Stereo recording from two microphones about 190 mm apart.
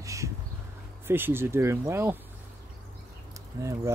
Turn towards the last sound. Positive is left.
turn(degrees=-15)  # may be behind; listen again after turning